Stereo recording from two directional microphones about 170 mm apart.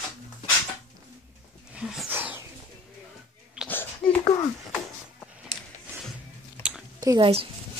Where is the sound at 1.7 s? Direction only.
10° right (ahead or behind).